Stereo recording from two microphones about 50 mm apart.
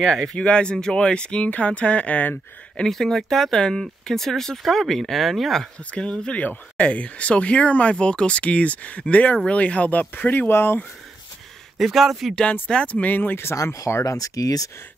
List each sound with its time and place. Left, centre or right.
0.0 s speech: centre; by 2.3 s left
2.9 s speech: centre
5.9 s speech: centre
6.4 s speech: left
10.5 s speech: left
11.8 s speech: centre
12.6 s speech: left
13.6 s speech: left